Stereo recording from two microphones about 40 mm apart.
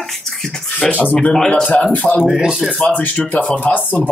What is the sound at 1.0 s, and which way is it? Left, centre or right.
Speech, left.